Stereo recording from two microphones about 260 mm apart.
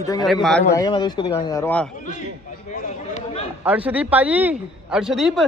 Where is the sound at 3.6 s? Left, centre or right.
Centre.